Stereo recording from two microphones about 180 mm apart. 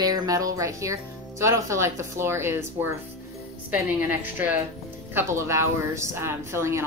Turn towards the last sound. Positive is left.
turn(degrees=-15)  # may be behind; listen again after turning